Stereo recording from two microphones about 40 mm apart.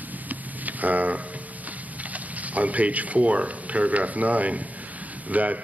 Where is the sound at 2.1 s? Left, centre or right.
Right.